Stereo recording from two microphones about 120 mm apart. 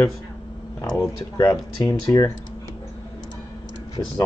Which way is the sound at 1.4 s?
30° left (ahead or behind).